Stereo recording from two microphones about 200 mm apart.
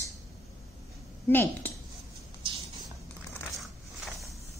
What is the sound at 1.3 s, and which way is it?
Speech, 10° left (ahead or behind).